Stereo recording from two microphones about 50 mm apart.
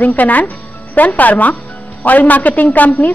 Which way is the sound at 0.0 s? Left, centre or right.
Left.